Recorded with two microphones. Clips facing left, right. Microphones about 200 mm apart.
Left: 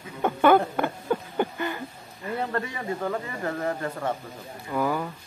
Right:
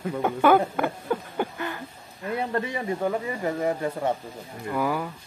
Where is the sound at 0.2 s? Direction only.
5° right (ahead or behind).